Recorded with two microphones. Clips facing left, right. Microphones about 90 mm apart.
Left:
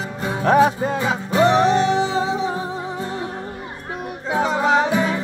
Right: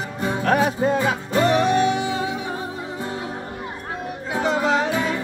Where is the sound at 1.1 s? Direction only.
25° left (ahead or behind).